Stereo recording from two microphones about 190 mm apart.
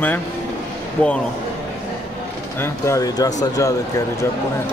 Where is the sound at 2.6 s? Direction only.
15° left (ahead or behind).